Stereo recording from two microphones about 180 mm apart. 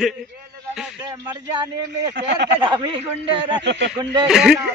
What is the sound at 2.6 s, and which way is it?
Speech, 25° right (ahead or behind).